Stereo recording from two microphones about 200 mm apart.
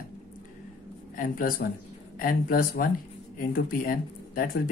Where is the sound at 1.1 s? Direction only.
45° left (ahead or behind).